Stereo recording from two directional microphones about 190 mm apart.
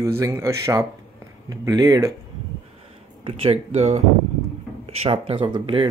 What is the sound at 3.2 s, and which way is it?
Speech, 30° right (ahead or behind).